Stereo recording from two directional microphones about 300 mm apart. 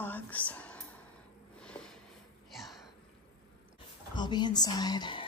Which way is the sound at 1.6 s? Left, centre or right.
Centre.